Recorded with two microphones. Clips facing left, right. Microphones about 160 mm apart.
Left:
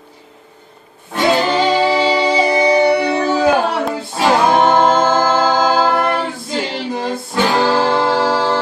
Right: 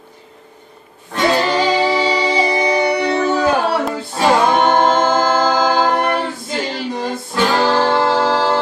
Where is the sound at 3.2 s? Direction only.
10° left (ahead or behind).